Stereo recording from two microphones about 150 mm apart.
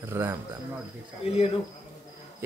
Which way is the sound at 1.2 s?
40° left (ahead or behind).